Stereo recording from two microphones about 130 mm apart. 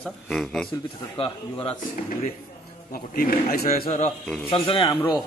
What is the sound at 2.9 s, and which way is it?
Speech, 90° left.